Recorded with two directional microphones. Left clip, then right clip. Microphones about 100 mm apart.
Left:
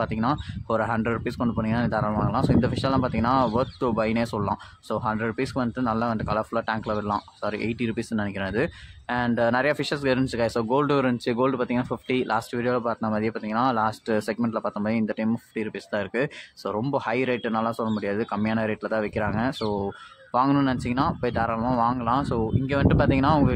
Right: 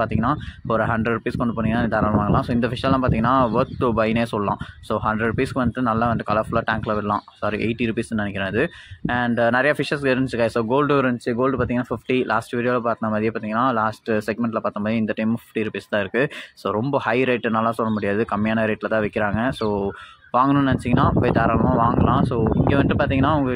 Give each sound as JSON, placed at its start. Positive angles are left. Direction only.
{"t": 0.0, "sound": "speech", "side_deg": -20}
{"t": 21.6, "sound": "speech", "side_deg": -15}